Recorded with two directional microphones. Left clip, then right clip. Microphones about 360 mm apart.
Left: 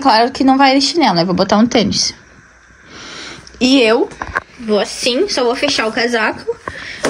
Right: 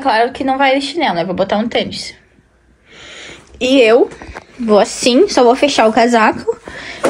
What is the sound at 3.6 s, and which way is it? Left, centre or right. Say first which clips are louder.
Speech: right 2 dB; centre.